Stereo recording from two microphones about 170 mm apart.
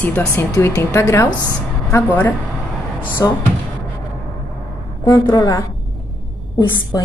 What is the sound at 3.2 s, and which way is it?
Speech, 20° left (ahead or behind).